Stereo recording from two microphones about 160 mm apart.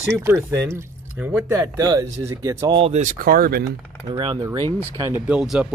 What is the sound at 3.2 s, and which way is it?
Speech, 65° right (ahead or behind).